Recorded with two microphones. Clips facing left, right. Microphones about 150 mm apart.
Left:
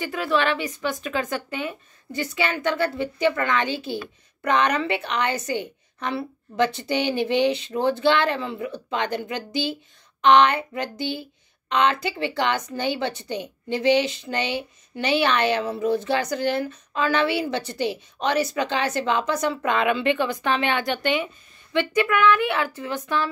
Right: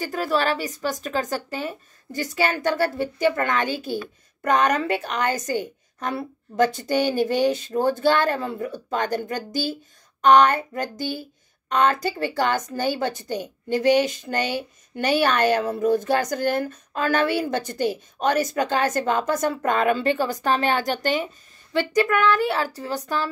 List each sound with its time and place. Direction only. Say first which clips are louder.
0.0 s a woman's voice: even; 40° right (ahead or behind)